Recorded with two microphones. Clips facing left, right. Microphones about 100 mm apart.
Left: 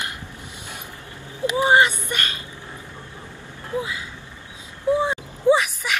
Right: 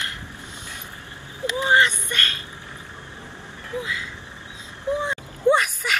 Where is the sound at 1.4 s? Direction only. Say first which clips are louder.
Left 3 dB; 20° left (ahead or behind).